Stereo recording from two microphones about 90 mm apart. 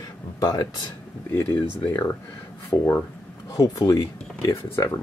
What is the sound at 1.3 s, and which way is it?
Speech, 20° left (ahead or behind).